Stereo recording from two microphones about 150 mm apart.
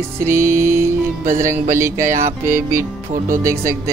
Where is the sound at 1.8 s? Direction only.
20° right (ahead or behind).